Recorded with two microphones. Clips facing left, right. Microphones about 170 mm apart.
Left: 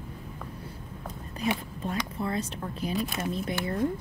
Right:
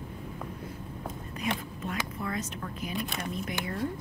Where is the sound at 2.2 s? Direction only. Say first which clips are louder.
Left 3 dB; 30° left (ahead or behind).